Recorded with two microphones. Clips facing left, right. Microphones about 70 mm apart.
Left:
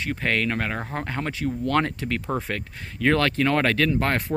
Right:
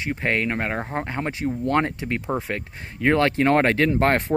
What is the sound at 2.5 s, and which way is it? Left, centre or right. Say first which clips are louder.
Speech: right 1 dB; right.